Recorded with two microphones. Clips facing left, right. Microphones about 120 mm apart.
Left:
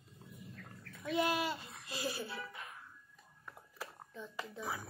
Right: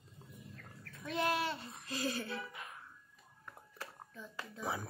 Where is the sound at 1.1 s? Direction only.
15° left (ahead or behind).